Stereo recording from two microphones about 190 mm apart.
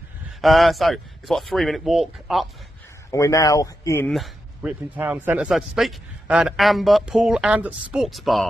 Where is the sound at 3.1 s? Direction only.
15° left (ahead or behind).